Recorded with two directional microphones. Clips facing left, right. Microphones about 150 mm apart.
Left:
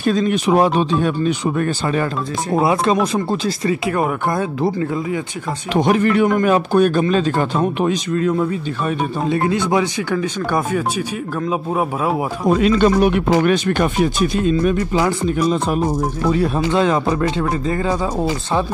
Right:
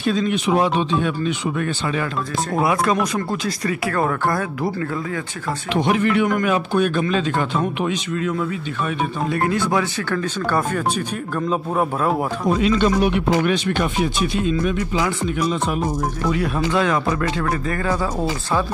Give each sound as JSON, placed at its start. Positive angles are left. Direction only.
{"t": 0.0, "sound": "speech", "side_deg": 45}
{"t": 2.5, "sound": "speech", "side_deg": 25}
{"t": 5.7, "sound": "a man's voice", "side_deg": 40}
{"t": 9.3, "sound": "speech", "side_deg": 20}
{"t": 12.5, "sound": "speech", "side_deg": 50}